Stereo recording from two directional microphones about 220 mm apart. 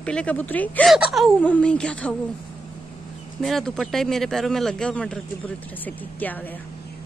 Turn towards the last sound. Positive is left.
turn(degrees=5)  # may be behind; listen again after turning